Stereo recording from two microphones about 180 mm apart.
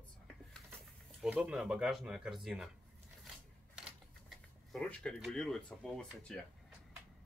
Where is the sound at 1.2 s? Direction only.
5° right (ahead or behind).